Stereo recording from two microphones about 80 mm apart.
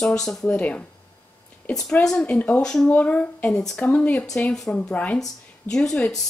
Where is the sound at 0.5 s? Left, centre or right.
Centre.